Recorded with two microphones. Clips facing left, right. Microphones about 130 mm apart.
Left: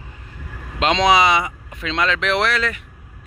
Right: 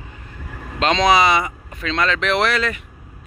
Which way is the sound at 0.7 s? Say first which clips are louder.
Even; 5° left (ahead or behind).